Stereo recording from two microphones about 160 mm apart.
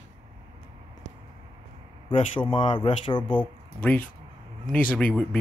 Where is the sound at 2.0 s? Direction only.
30° left (ahead or behind).